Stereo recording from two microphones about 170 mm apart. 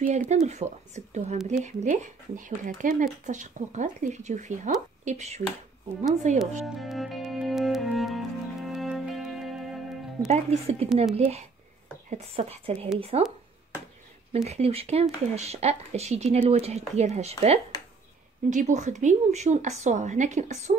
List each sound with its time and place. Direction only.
0.1 s speech: 40° right (ahead or behind)
6.3 s cello: centre (ahead or behind)
10.2 s speech: 40° right (ahead or behind)
14.3 s speech: 40° right (ahead or behind)